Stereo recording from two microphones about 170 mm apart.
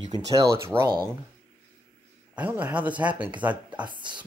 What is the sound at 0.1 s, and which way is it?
Speech, 20° right (ahead or behind).